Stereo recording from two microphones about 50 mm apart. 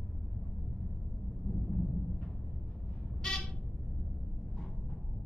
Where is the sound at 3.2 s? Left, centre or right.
Centre.